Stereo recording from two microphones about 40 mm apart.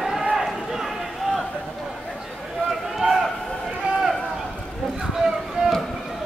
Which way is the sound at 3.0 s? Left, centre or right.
Centre.